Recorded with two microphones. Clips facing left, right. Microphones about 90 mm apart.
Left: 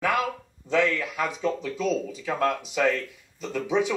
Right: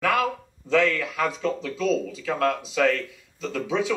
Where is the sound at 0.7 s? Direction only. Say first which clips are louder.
Right 2 dB; 20° left (ahead or behind).